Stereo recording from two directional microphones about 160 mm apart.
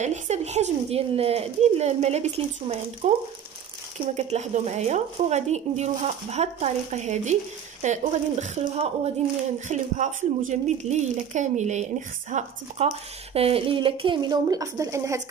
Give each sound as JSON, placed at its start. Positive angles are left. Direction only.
{"t": 0.0, "sound": "speech", "side_deg": -45}
{"t": 12.8, "sound": "speech", "side_deg": -35}